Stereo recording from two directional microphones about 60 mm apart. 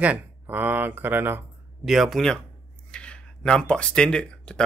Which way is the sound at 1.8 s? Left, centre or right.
Centre.